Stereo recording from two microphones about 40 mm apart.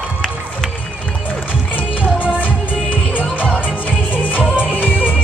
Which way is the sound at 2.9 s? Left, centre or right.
Left.